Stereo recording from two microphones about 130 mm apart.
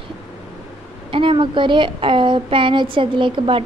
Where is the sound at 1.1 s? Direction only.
40° right (ahead or behind).